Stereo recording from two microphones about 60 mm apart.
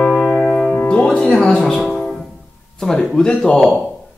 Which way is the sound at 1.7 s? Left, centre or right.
Centre.